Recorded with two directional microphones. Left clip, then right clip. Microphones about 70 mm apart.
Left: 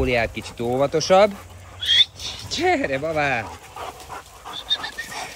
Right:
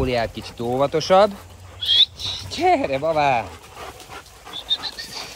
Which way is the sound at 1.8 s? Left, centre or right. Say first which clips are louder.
Right 1 dB; left.